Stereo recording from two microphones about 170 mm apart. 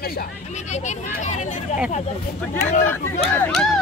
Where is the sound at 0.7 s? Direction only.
45° left (ahead or behind).